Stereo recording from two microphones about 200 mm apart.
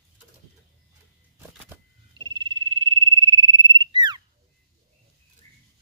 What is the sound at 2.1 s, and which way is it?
Frog, 25° right (ahead or behind).